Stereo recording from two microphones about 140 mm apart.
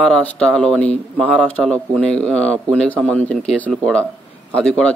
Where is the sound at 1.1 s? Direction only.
5° right (ahead or behind).